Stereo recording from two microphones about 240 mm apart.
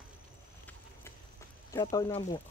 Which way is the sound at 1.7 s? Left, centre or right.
Centre.